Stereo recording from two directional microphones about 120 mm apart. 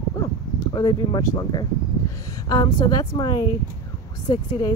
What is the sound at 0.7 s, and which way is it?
Speech, 35° left (ahead or behind).